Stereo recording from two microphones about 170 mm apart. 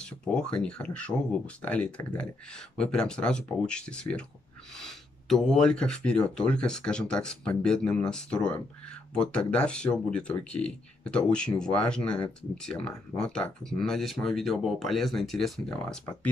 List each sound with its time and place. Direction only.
0.0 s speech: 5° left (ahead or behind)